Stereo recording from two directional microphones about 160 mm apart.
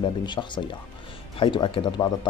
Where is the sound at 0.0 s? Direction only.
30° left (ahead or behind).